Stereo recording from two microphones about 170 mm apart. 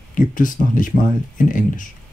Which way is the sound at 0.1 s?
50° left (ahead or behind).